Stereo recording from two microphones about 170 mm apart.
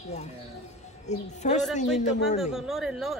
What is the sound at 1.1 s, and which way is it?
Speech, 45° left (ahead or behind).